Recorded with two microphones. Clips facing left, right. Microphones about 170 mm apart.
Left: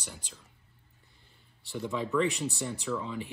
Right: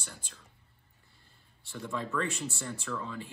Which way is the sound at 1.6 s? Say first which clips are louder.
Left 4 dB; 15° left (ahead or behind).